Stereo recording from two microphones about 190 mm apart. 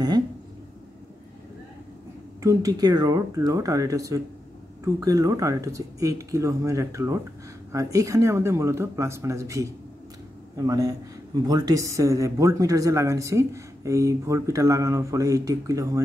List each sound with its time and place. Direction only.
2.4 s speech: 20° right (ahead or behind)
10.7 s a man's voice: 20° right (ahead or behind)